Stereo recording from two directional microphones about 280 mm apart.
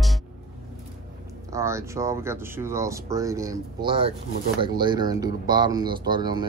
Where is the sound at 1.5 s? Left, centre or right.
Centre.